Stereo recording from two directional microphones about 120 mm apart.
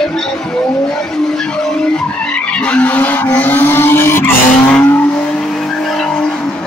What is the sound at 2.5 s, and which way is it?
Vehicle, 10° left (ahead or behind).